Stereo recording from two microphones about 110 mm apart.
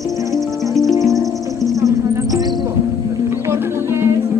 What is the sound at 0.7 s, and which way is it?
Music, centre (ahead or behind).